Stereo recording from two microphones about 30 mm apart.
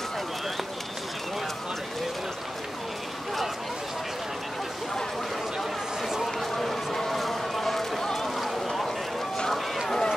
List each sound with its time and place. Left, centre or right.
5.6 s chatter: centre
6.2 s run: centre
8.0 s run: centre
8.4 s run: centre
9.8 s run: centre